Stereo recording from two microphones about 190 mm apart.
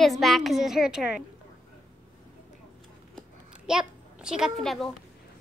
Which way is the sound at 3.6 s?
5° right (ahead or behind).